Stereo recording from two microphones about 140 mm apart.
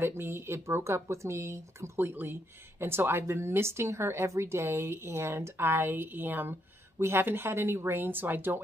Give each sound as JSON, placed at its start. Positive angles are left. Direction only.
{"t": 0.0, "sound": "speech", "side_deg": -20}